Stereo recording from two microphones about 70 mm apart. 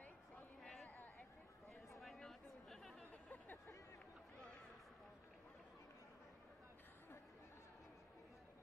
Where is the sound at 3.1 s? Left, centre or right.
Left.